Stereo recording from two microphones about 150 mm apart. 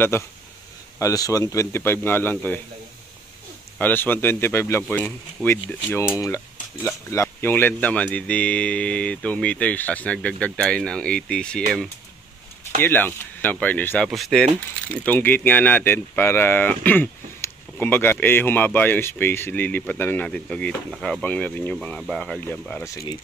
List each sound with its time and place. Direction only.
0.1 s speech: 20° left (ahead or behind)
3.7 s speech: 10° left (ahead or behind)
12.8 s speech: 15° left (ahead or behind)
14.0 s speech: centre (ahead or behind)
22.8 s speech: 20° left (ahead or behind)